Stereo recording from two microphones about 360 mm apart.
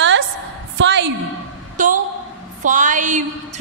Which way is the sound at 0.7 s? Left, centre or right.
Right.